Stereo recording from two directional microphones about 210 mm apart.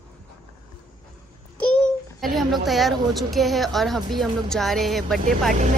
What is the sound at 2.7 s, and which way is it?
A woman's voice, centre (ahead or behind).